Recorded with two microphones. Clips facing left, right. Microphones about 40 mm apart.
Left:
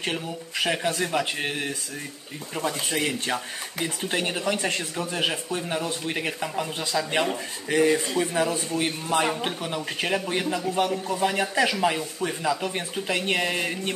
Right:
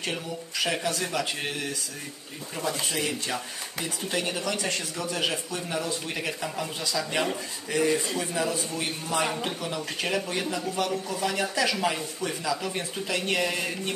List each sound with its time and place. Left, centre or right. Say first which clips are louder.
0.0 s speech: left 2 dB; left
2.9 s speech: left 3 dB; left
6.8 s a man's voice: left 3 dB; left
9.8 s speech: left 3 dB; centre